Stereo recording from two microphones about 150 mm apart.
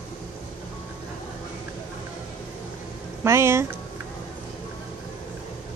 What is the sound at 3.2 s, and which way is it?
Speech, 20° right (ahead or behind).